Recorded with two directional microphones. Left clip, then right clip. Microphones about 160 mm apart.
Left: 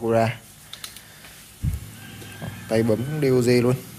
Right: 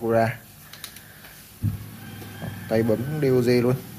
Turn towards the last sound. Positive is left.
turn(degrees=10)  # may be behind; listen again after turning